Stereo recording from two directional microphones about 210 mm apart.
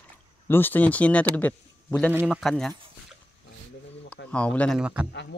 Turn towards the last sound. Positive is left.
turn(degrees=55)  # may be behind; listen again after turning